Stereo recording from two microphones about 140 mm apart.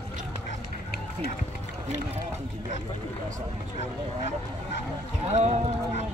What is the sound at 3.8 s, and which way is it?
Speech, 50° right (ahead or behind).